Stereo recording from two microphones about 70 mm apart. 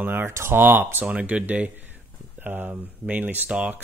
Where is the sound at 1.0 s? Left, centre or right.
Centre.